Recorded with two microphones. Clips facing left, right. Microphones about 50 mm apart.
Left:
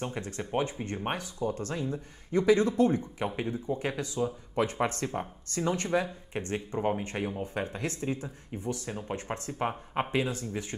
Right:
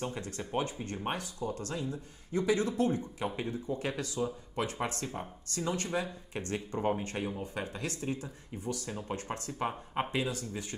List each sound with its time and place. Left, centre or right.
0.0 s speech: left
3.3 s speech: left